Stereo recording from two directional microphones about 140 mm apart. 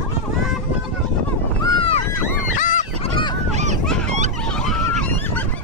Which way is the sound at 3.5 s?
55° right (ahead or behind).